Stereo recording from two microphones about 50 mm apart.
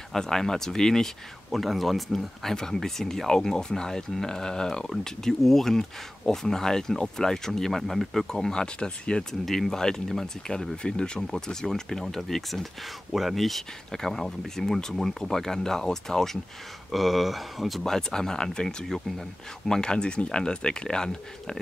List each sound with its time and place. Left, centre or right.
0.1 s speech: centre
9.5 s speech: centre